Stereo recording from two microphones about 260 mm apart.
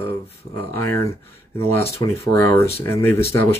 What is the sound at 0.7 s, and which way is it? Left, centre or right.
Speech, centre.